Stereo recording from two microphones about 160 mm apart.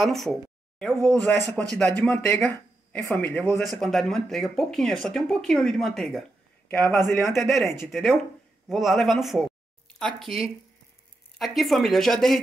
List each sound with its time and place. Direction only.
0.0 s speech: centre (ahead or behind)
3.8 s speech: centre (ahead or behind)
6.7 s speech: 15° left (ahead or behind)
7.3 s speech: centre (ahead or behind)